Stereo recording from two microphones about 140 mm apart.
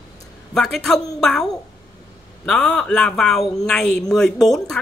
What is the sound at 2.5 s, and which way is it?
A man's voice, 5° left (ahead or behind).